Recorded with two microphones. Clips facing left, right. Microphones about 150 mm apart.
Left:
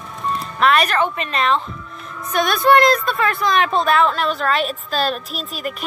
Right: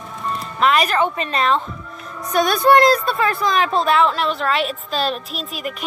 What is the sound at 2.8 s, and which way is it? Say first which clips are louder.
A woman's voice: right 1 dB; 30° right (ahead or behind).